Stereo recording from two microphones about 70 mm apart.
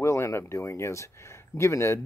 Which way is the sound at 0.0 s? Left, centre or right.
Left.